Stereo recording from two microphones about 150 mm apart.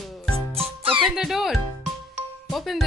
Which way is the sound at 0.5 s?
40° right (ahead or behind).